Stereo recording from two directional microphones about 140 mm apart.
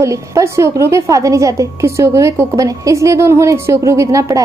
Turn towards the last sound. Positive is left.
turn(degrees=-25)  # may be behind; listen again after turning